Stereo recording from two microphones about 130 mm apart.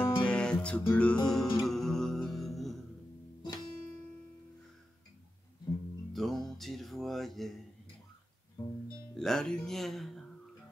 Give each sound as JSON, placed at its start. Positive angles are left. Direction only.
{"t": 0.2, "sound": "music", "side_deg": 5}
{"t": 6.1, "sound": "music", "side_deg": 0}
{"t": 8.6, "sound": "music", "side_deg": 25}
{"t": 9.1, "sound": "speech", "side_deg": 5}